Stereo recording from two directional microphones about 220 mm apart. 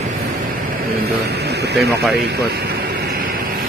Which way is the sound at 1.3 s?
50° right (ahead or behind).